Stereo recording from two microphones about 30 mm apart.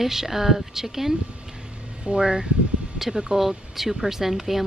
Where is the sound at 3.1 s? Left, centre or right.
Centre.